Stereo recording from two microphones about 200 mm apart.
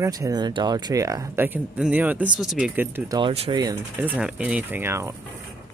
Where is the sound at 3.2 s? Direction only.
25° right (ahead or behind).